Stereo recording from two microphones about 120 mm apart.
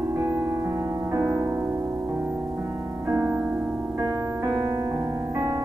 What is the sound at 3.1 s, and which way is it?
Music, 25° right (ahead or behind).